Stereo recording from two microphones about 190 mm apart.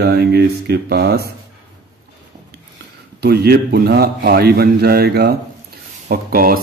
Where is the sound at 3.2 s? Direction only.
55° right (ahead or behind).